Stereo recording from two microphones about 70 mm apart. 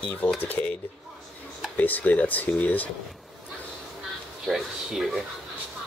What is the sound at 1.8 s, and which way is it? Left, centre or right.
Speech, left.